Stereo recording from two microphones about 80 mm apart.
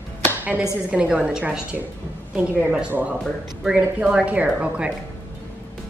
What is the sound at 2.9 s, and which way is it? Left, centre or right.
Speech, right.